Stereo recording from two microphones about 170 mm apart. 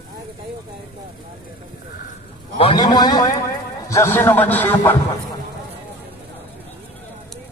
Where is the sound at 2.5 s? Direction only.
30° left (ahead or behind); by 5.0 s 10° left (ahead or behind).